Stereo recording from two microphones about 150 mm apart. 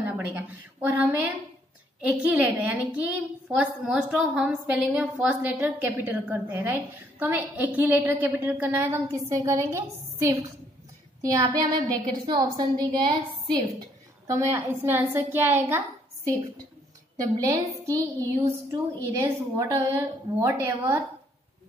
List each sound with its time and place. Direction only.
0.0 s a woman's voice: 15° right (ahead or behind); by 13.6 s 30° right (ahead or behind)
14.2 s a woman's voice: 20° right (ahead or behind)
17.4 s a woman's voice: 20° right (ahead or behind)